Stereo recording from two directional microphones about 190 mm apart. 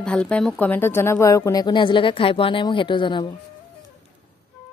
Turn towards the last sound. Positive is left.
turn(degrees=25)  # may be behind; listen again after turning